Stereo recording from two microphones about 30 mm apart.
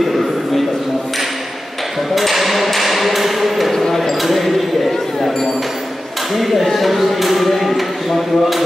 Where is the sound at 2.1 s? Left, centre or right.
Centre.